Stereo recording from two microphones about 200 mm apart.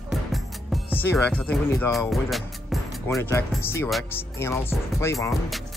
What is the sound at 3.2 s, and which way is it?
Speech, 15° left (ahead or behind).